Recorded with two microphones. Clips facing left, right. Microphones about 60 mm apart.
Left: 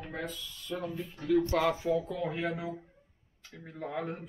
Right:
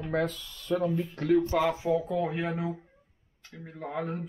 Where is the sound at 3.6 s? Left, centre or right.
Centre.